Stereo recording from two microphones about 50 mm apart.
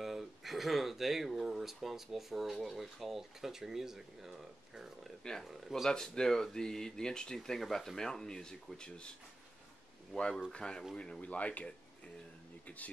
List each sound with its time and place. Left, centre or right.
0.0 s speech: centre
5.9 s speech: centre
10.1 s speech: centre
11.1 s speech: left